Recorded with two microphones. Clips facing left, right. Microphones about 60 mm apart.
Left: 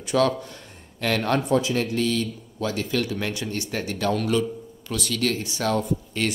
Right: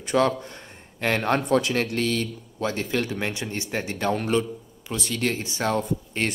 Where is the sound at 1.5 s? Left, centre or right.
Right.